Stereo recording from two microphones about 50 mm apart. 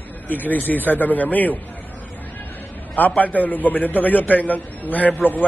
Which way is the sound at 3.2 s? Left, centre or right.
Left.